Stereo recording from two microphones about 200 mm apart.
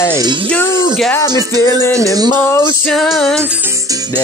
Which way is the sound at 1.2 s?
20° right (ahead or behind).